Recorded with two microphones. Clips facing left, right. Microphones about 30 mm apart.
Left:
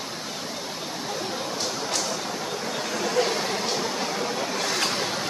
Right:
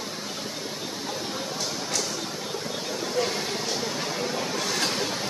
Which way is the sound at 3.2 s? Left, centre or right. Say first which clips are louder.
Left 3 dB; left.